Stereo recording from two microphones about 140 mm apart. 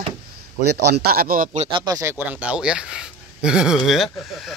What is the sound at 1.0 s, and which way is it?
Speech, 90° right.